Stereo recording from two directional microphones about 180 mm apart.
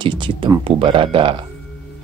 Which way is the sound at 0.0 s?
25° right (ahead or behind).